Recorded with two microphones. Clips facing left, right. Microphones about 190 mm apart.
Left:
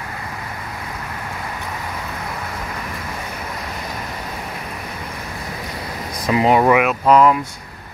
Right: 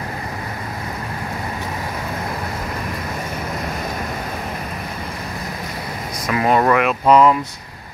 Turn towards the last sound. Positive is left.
turn(degrees=5)  # may be behind; listen again after turning